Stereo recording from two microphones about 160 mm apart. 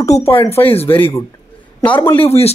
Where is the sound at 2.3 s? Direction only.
40° left (ahead or behind).